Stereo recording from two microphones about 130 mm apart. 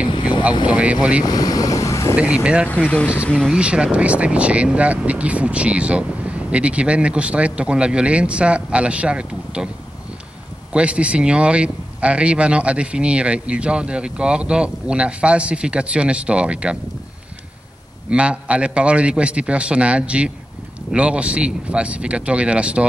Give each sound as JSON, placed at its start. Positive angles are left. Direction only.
{"t": 0.7, "sound": "speech", "side_deg": -10}
{"t": 1.2, "sound": "vehicle", "side_deg": 30}
{"t": 2.1, "sound": "speech", "side_deg": -10}
{"t": 3.3, "sound": "speech", "side_deg": 5}
{"t": 3.5, "sound": "speech", "side_deg": -10}
{"t": 10.7, "sound": "speech", "side_deg": -10}
{"t": 18.1, "sound": "speech", "side_deg": -10}